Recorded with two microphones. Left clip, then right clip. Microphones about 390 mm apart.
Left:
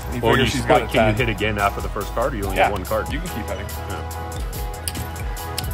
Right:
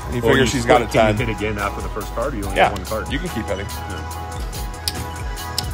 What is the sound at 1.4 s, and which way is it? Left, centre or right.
Speech, left.